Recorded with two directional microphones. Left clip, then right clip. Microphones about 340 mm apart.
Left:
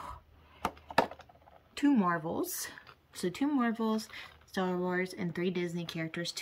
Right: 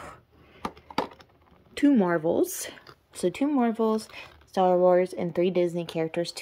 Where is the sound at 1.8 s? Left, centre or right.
Right.